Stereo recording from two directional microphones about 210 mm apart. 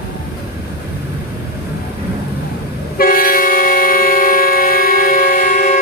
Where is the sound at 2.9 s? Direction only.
45° left (ahead or behind).